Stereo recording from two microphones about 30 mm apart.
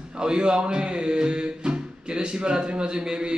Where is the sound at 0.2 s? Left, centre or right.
Right.